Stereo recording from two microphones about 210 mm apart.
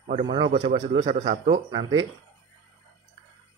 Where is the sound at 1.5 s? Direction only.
25° right (ahead or behind).